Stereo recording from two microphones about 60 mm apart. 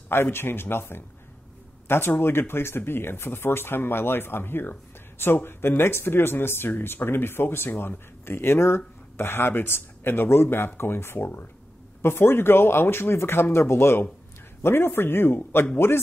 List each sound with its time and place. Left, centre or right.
0.1 s speech: left